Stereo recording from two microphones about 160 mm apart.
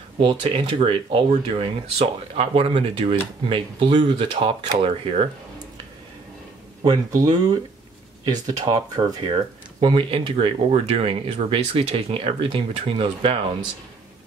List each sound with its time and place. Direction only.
0.3 s speech: 35° right (ahead or behind)
6.8 s speech: 25° right (ahead or behind)
8.6 s speech: 30° right (ahead or behind)